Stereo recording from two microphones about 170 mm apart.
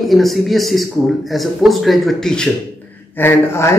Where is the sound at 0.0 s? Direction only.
Centre (ahead or behind).